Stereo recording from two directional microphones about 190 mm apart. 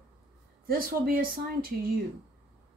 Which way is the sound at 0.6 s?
50° right (ahead or behind).